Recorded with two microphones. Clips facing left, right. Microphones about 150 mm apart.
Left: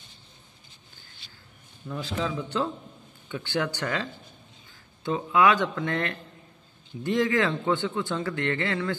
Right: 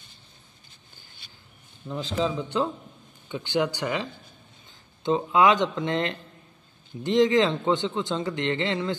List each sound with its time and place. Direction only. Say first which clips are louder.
1.9 s a man's voice: right 3 dB; 20° right (ahead or behind)